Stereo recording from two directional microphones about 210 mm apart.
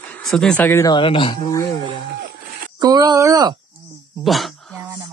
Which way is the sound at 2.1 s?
50° right (ahead or behind).